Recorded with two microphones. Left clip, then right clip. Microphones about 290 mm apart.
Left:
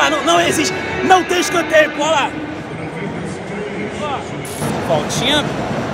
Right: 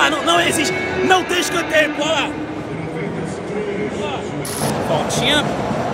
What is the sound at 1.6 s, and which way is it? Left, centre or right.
Speech, centre.